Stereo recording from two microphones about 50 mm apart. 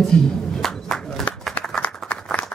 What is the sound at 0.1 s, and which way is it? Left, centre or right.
Speech, left.